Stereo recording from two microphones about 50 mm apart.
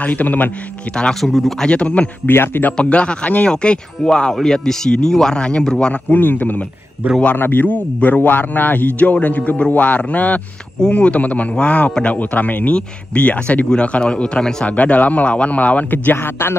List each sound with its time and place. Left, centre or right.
0.0 s a man's voice: left
1.2 s speech: centre
1.6 s speech: left
2.2 s a man's voice: left
2.8 s speech: left
6.1 s a man's voice: left
7.0 s a man's voice: right
7.3 s a man's voice: left
13.7 s speech: left
14.8 s speech: left
16.1 s a man's voice: left